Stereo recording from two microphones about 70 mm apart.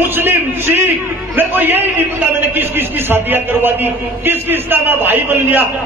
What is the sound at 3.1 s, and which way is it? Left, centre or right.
A man's voice, right.